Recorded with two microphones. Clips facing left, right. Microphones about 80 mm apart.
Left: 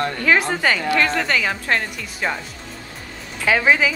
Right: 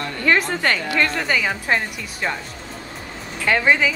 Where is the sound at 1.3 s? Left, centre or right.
Centre.